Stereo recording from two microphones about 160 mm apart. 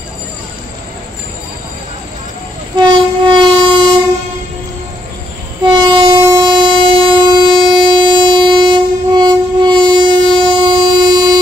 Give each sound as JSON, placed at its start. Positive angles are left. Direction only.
{"t": 2.7, "sound": "train", "side_deg": -30}
{"t": 5.6, "sound": "train", "side_deg": -30}